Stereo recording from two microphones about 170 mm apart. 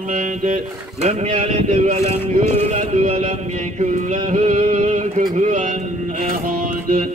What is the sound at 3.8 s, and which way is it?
Music, 45° right (ahead or behind).